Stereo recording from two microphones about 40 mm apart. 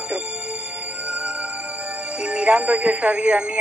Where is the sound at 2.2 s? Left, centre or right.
Right.